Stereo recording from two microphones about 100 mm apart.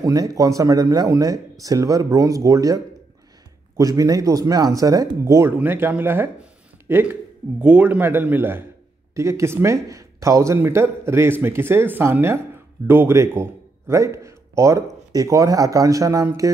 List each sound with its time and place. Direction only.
0.0 s speech: 35° right (ahead or behind)